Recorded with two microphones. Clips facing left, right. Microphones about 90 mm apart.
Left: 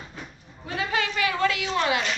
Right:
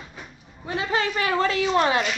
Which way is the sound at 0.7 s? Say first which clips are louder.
Right 2 dB; 30° right (ahead or behind).